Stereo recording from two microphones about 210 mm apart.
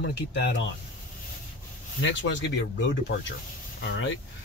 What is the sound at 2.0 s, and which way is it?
Speech, 60° left (ahead or behind).